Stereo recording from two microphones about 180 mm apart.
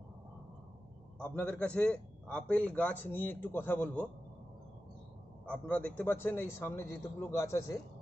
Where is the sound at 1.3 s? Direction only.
5° left (ahead or behind).